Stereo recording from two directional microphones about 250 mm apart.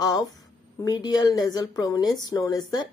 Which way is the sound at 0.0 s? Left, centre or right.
Centre.